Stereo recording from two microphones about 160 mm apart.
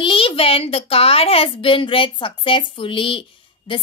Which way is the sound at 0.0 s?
30° left (ahead or behind).